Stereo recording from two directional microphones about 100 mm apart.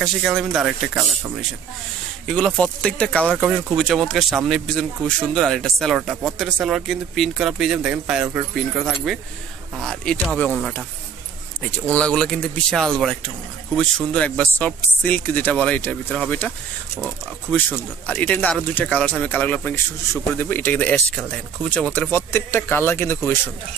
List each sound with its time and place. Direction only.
0.0 s speech: centre (ahead or behind)
2.2 s speech: 10° left (ahead or behind)
11.9 s speech: 10° left (ahead or behind)